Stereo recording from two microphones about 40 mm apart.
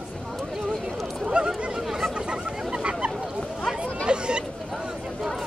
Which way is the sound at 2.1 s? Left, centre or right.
Right.